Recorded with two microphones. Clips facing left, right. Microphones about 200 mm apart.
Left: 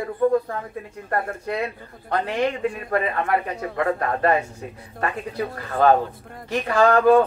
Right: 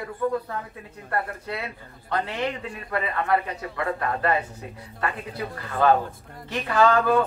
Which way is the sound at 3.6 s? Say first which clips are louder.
Left 5 dB; 45° left (ahead or behind).